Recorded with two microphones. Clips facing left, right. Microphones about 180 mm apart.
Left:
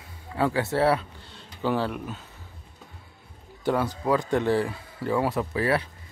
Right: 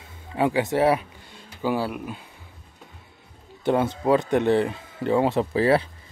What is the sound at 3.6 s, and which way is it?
Speech, 25° right (ahead or behind).